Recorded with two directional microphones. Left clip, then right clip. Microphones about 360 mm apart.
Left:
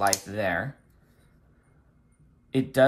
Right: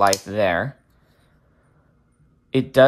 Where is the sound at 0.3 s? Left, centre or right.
Centre.